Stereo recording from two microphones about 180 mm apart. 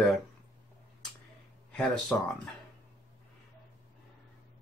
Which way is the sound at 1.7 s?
Centre (ahead or behind).